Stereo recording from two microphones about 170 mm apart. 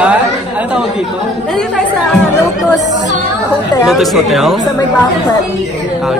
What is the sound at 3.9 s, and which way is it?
Speech, centre (ahead or behind).